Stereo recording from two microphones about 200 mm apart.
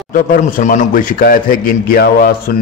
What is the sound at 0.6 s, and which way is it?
A man's voice, 40° left (ahead or behind).